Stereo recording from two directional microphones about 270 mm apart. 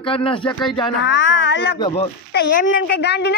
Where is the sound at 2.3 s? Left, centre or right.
Left.